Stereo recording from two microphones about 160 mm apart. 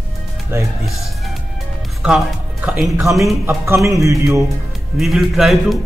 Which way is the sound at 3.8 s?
20° right (ahead or behind).